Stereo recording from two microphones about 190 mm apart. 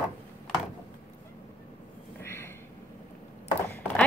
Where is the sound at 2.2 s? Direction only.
15° left (ahead or behind).